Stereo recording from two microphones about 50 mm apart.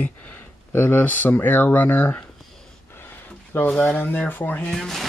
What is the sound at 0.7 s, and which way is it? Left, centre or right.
Speech, left.